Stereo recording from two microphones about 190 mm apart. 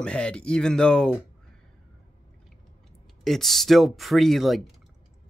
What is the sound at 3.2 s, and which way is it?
Speech, centre (ahead or behind).